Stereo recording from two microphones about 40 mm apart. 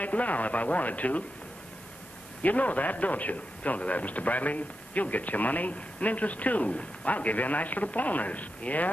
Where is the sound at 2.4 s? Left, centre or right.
Left.